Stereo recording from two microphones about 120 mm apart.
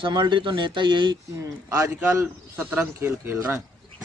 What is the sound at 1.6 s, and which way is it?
Speech, 25° right (ahead or behind).